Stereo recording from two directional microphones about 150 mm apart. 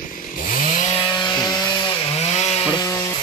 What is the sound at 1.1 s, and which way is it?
Wood, 25° left (ahead or behind).